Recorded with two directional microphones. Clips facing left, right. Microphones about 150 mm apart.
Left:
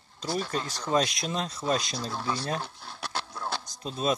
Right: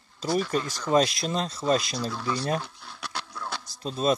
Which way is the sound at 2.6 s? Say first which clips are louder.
Left 2 dB; 30° left (ahead or behind).